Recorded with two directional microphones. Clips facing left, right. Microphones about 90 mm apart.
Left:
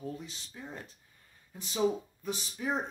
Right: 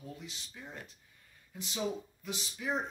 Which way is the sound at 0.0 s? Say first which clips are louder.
Left 6 dB; 40° left (ahead or behind).